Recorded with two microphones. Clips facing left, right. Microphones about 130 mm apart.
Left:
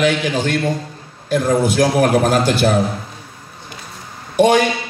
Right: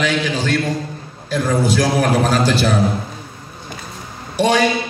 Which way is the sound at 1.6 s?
50° left (ahead or behind).